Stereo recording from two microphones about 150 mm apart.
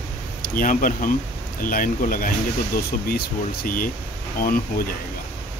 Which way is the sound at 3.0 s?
80° left.